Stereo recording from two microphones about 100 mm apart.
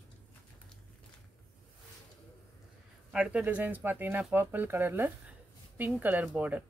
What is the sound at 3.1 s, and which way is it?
Speech, 10° right (ahead or behind).